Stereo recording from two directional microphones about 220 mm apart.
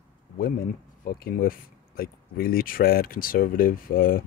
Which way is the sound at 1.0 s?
40° left (ahead or behind).